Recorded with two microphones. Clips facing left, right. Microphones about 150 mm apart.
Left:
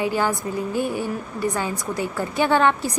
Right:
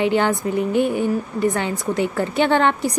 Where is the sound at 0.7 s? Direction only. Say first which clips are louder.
Right 5 dB; 60° right (ahead or behind).